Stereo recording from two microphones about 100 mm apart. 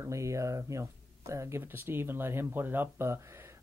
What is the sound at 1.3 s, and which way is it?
Speech, 30° right (ahead or behind).